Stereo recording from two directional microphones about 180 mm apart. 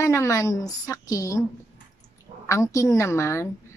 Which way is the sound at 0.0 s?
15° left (ahead or behind).